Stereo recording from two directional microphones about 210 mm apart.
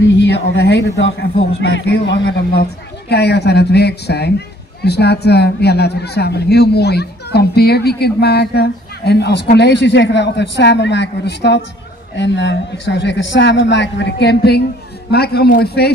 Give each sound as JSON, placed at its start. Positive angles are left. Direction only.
{"t": 0.0, "sound": "a man's voice", "side_deg": 55}